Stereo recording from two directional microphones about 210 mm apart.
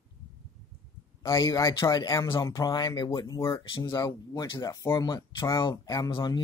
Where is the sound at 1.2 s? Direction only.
15° left (ahead or behind).